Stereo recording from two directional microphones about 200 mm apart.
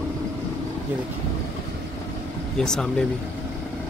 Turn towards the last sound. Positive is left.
turn(degrees=5)  # may be behind; listen again after turning